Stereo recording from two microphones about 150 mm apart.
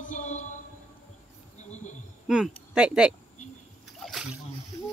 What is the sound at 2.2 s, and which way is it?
Speech, 5° right (ahead or behind).